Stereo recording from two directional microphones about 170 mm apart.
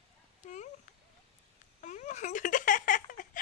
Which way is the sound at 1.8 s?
45° left (ahead or behind).